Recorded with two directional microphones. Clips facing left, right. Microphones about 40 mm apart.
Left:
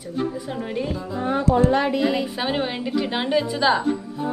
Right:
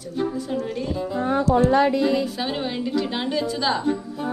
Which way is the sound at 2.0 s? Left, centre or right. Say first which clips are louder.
Even; left.